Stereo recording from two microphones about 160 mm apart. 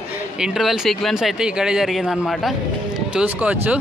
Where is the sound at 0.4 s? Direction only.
Centre (ahead or behind).